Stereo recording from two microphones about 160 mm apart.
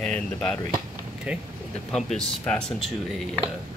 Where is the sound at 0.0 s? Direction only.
5° left (ahead or behind).